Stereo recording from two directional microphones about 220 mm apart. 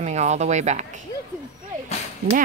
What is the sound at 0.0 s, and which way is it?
Speech, 30° right (ahead or behind).